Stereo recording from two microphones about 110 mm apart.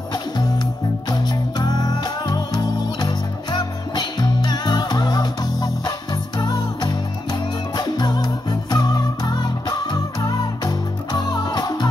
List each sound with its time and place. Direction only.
1.1 s music: 40° left (ahead or behind)